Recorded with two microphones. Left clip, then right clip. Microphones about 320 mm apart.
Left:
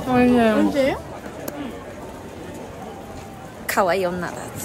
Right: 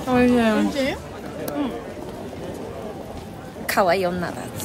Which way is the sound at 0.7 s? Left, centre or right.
Centre.